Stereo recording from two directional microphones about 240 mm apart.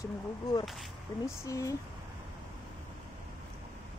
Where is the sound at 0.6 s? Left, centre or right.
Centre.